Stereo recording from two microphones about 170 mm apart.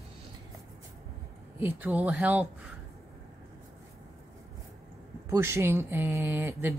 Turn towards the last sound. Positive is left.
turn(degrees=-10)  # may be behind; listen again after turning